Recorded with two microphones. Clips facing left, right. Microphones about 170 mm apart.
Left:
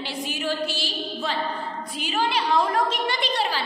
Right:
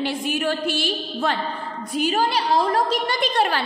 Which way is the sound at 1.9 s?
45° right (ahead or behind).